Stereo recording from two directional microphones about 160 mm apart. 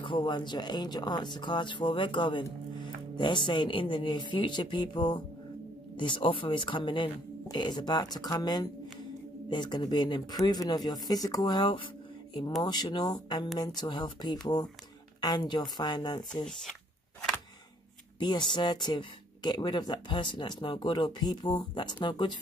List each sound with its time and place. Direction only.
0.0 s speech: 30° left (ahead or behind)
18.2 s speech: 30° left (ahead or behind)